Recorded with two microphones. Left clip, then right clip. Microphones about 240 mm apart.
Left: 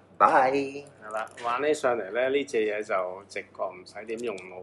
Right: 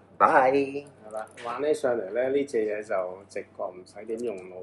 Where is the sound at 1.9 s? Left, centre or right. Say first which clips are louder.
Even; centre.